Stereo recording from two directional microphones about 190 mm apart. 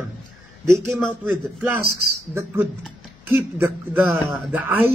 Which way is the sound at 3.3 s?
10° right (ahead or behind).